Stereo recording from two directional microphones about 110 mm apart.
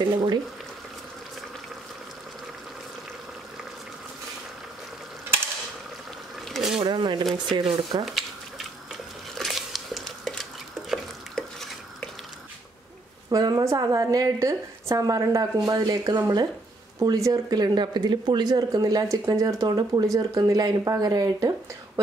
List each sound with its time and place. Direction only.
0.0 s speech: 45° right (ahead or behind)
6.5 s a sound: centre (ahead or behind)
6.8 s speech: 40° right (ahead or behind)
8.0 s a sound: centre (ahead or behind)
10.9 s stir: 5° left (ahead or behind)
13.3 s speech: 35° right (ahead or behind)